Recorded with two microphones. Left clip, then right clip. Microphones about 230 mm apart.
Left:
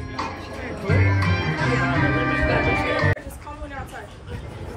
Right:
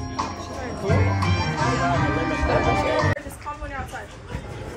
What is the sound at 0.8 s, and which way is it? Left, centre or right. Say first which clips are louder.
Music: even; right.